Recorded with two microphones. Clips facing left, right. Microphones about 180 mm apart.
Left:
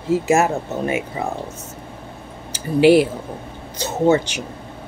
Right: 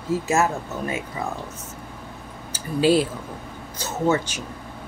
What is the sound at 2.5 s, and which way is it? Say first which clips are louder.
Speech: left 6 dB; 75° left (ahead or behind).